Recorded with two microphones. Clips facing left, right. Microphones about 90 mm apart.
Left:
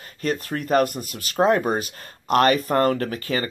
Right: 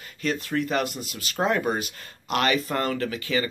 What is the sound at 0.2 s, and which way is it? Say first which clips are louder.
Speech: left 1 dB; 40° left (ahead or behind).